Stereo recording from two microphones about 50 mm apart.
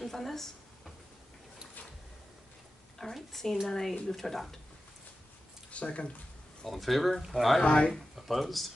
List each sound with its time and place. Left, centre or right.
0.0 s a sound: centre
3.0 s speech: centre
5.7 s speech: left
6.6 s speech: centre
7.6 s speech: left
8.2 s speech: centre